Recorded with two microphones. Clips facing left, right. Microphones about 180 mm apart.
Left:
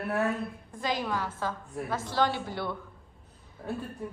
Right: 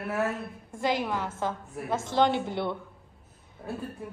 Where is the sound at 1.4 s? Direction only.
20° right (ahead or behind).